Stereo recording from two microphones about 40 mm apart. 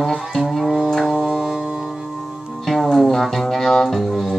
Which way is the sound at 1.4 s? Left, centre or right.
Centre.